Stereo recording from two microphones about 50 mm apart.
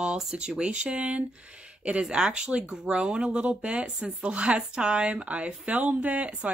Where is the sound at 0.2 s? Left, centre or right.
Centre.